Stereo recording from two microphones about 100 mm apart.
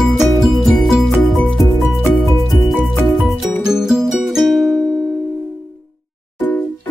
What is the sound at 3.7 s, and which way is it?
Music, 5° right (ahead or behind).